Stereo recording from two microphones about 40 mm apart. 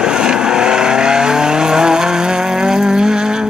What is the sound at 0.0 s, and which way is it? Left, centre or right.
Vehicle, centre.